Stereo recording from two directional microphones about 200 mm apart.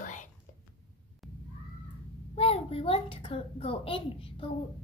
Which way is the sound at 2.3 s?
30° left (ahead or behind).